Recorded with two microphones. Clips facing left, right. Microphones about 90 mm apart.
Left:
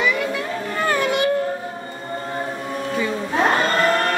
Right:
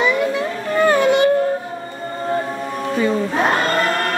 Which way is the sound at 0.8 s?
25° right (ahead or behind).